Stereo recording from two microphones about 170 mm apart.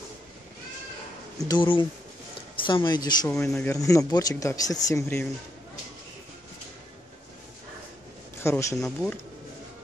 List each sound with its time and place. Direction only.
1.5 s speech: 30° left (ahead or behind)
3.4 s speech: 5° left (ahead or behind)
3.7 s speech: 20° left (ahead or behind)
8.4 s speech: 15° left (ahead or behind)
8.8 s speech: 5° left (ahead or behind)